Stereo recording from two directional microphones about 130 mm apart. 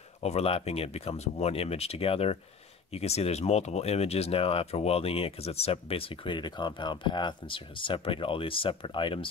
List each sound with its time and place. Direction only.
0.2 s speech: 50° left (ahead or behind)